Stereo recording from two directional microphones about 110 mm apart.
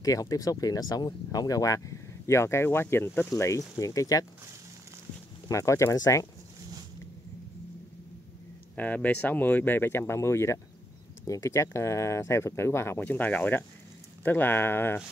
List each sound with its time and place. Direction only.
0.0 s speech: 35° left (ahead or behind)
5.5 s speech: 30° left (ahead or behind)
8.7 s speech: 15° left (ahead or behind)